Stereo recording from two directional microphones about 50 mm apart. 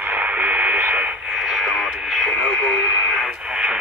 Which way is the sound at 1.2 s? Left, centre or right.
Centre.